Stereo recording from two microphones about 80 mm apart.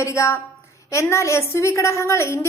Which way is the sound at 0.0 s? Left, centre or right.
Left.